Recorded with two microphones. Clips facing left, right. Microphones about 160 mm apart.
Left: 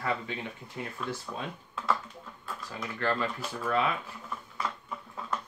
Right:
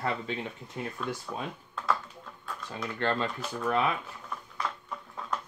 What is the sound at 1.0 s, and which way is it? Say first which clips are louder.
Speech: even; centre (ahead or behind).